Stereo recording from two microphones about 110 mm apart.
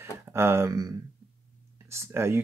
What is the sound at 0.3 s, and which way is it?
Speech, 25° right (ahead or behind).